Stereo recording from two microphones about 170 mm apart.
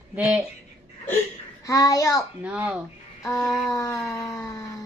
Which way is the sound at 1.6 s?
20° left (ahead or behind).